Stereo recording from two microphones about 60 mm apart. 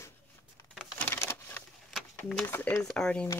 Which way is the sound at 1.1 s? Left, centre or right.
Left.